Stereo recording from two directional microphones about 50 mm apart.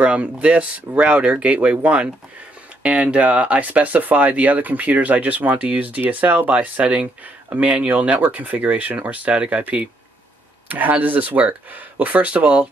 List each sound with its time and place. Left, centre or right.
0.0 s speech: right